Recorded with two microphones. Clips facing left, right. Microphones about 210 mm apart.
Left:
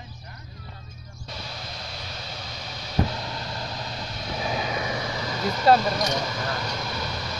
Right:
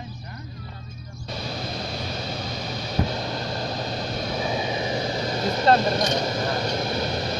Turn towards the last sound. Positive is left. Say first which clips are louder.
# right 6 dB
turn(degrees=-30)  # may be behind; listen again after turning